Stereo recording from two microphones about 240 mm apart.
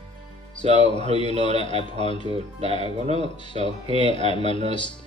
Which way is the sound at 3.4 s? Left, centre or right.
Left.